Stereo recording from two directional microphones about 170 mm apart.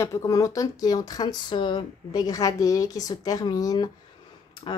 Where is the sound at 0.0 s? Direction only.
20° left (ahead or behind).